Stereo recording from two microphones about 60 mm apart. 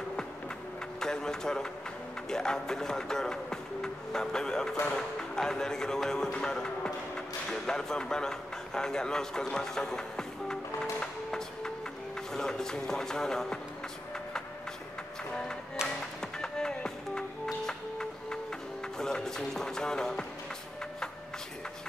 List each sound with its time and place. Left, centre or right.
0.9 s speech: centre
12.3 s music: centre
15.8 s music: centre
16.2 s music: centre